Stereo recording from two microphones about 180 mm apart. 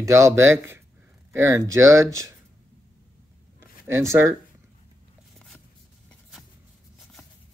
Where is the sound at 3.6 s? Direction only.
15° right (ahead or behind).